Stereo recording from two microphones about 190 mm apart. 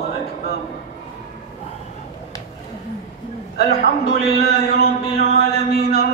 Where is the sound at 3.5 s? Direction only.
55° left (ahead or behind).